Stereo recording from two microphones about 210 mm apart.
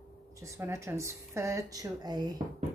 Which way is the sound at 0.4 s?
15° right (ahead or behind).